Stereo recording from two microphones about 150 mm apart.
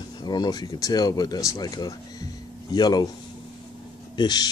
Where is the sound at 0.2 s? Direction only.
30° left (ahead or behind).